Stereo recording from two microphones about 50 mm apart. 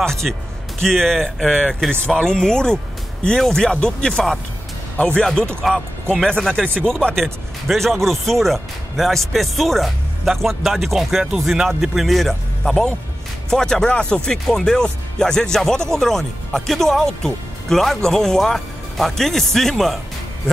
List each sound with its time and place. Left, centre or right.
0.0 s speech: centre; by 5.2 s left
5.2 s speech: centre